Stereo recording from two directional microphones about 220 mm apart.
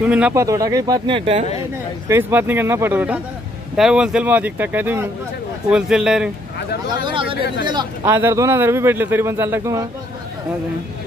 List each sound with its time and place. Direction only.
0.0 s a man's voice: 5° right (ahead or behind); by 1.4 s 25° right (ahead or behind)
2.0 s a man's voice: 10° right (ahead or behind)
6.9 s a man's voice: 20° right (ahead or behind)